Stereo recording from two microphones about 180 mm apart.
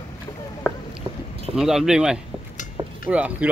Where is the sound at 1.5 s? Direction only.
Centre (ahead or behind).